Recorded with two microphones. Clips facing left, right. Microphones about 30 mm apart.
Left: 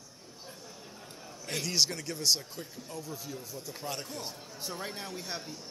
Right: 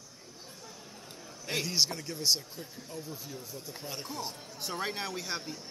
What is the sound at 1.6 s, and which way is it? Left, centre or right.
Speech, centre.